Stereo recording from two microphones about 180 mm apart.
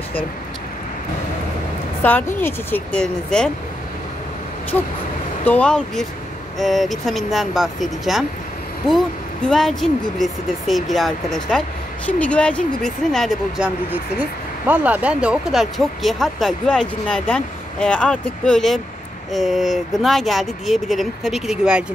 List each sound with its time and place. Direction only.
2.0 s speech: 10° left (ahead or behind)
5.4 s speech: 10° left (ahead or behind)
14.7 s speech: 10° right (ahead or behind)